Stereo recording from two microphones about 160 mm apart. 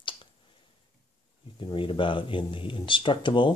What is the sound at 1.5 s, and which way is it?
Speech, 30° left (ahead or behind).